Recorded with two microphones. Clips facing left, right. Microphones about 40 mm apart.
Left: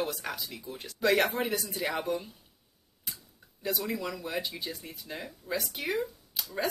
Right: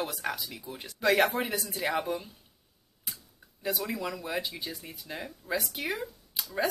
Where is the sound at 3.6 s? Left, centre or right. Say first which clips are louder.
Even; centre.